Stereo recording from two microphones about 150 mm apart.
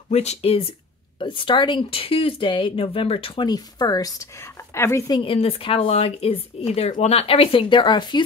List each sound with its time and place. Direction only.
0.1 s speech: 45° left (ahead or behind); by 5.2 s 20° left (ahead or behind)
5.2 s speech: 40° left (ahead or behind)